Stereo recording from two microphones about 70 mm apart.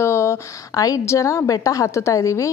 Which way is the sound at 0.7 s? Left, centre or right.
Left.